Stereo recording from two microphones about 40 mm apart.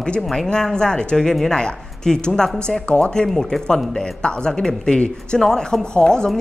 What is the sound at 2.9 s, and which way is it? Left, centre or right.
Speech, left.